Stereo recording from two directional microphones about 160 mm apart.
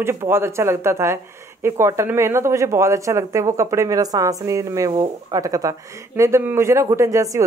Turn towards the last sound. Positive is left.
turn(degrees=-20)  # may be behind; listen again after turning